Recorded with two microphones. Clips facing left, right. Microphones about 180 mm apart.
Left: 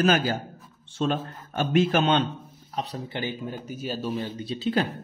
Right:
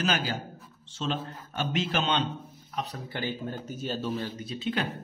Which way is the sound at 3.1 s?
15° left (ahead or behind).